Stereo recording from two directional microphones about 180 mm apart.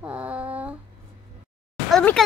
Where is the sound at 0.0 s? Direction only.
10° right (ahead or behind).